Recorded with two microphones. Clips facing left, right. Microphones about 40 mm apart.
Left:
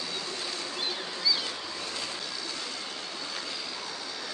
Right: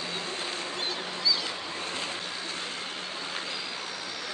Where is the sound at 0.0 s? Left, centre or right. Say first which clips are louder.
Right 2 dB; right.